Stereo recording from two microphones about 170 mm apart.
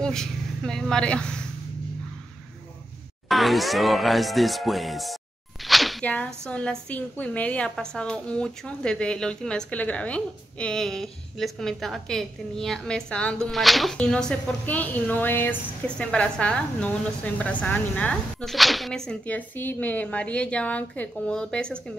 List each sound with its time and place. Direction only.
0.0 s speech: 5° left (ahead or behind)
3.3 s a woman's voice: centre (ahead or behind)